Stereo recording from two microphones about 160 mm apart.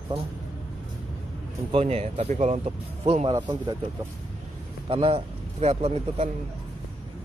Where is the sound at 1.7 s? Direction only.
40° right (ahead or behind).